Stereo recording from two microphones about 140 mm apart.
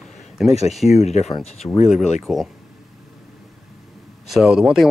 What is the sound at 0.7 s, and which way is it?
Speech, centre (ahead or behind).